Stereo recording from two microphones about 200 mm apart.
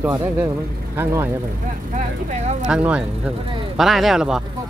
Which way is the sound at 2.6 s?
5° right (ahead or behind).